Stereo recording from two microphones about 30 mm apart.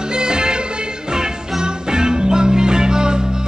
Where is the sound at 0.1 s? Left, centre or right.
Right.